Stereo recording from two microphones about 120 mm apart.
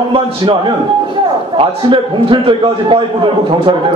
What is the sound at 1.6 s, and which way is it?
A man's voice, 45° right (ahead or behind).